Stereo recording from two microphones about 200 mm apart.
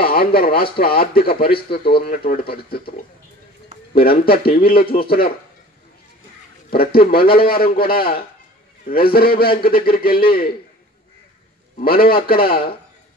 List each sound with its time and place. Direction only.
0.0 s a man's voice: 50° left (ahead or behind)
3.9 s a man's voice: 50° left (ahead or behind)
6.7 s a man's voice: 50° left (ahead or behind)
11.8 s a man's voice: 50° left (ahead or behind)